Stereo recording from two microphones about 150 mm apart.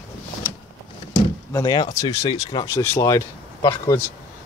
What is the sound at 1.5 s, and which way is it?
Speech, 25° left (ahead or behind).